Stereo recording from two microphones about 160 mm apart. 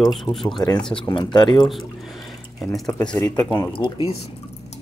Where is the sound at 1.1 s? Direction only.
30° left (ahead or behind).